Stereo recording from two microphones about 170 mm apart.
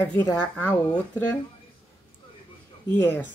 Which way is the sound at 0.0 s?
10° left (ahead or behind).